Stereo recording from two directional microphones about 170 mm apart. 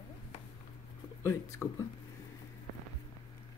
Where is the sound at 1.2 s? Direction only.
15° left (ahead or behind).